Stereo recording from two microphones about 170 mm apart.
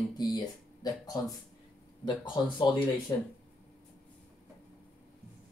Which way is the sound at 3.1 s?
20° left (ahead or behind).